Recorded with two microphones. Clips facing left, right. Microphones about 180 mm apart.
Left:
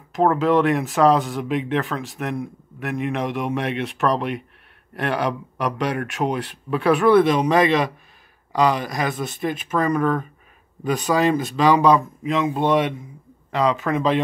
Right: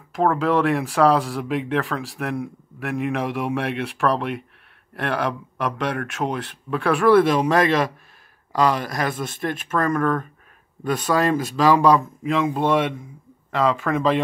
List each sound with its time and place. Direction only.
0.1 s speech: centre (ahead or behind)